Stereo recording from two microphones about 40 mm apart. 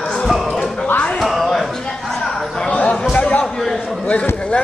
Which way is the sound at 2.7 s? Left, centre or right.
Left.